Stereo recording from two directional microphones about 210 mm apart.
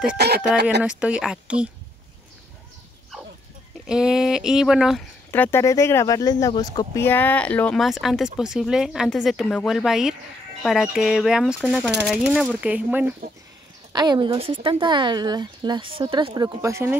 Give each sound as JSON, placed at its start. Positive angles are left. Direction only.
{"t": 0.2, "sound": "speech", "side_deg": -50}
{"t": 0.8, "sound": "speech", "side_deg": -5}
{"t": 3.8, "sound": "speech", "side_deg": -5}
{"t": 5.3, "sound": "speech", "side_deg": 10}
{"t": 13.9, "sound": "speech", "side_deg": -20}